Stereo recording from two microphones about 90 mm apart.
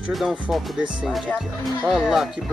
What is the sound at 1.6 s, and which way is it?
Speech, 5° right (ahead or behind).